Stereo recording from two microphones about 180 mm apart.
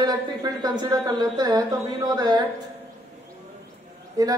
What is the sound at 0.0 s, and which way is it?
A woman's voice, 25° right (ahead or behind).